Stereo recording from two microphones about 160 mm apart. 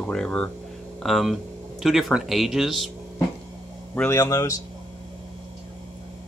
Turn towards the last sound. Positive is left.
turn(degrees=20)  # may be behind; listen again after turning